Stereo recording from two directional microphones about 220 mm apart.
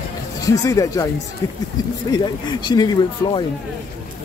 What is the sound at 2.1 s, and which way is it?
Speech, 20° left (ahead or behind).